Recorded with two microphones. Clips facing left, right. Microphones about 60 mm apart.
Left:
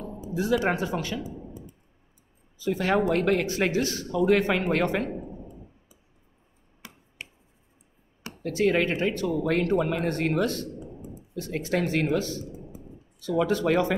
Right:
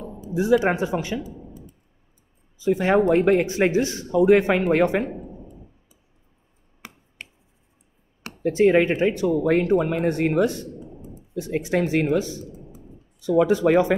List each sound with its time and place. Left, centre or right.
0.3 s speech: centre
2.6 s speech: right
5.1 s a sound: centre
8.4 s speech: right